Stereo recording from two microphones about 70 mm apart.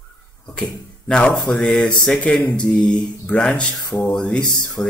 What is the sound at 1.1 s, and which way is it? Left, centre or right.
Speech, centre.